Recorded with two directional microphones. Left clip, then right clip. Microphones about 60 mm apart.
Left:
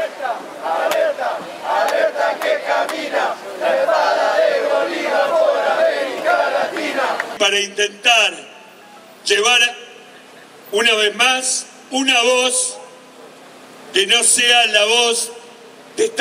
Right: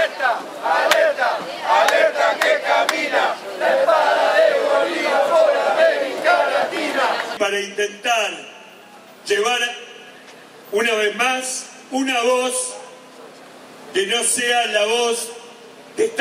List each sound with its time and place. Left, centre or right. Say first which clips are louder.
0.0 s battle cry: right 4 dB; left
0.4 s a sound: right 2 dB; centre
0.9 s battle cry: right 1 dB; centre
2.4 s crowd: right 1 dB; centre
3.0 s a sound: right 1 dB; centre
10.7 s a man's voice: left 3 dB; centre
13.9 s a man's voice: left 5 dB; centre